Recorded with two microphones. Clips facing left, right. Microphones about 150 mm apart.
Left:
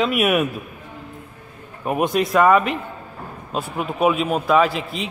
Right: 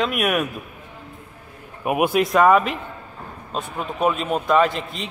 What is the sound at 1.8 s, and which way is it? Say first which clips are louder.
A man's voice: right 1 dB; 10° right (ahead or behind).